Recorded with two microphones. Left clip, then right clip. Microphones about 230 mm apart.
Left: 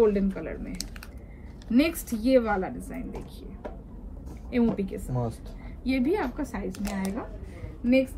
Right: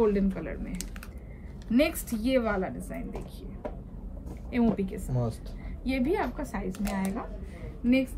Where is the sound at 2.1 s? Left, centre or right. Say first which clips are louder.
Left 4 dB; right.